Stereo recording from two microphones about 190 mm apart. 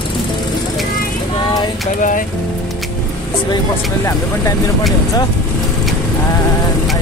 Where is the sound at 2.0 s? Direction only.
45° left (ahead or behind).